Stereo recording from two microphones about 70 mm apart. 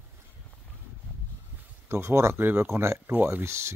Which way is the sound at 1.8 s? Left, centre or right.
Right.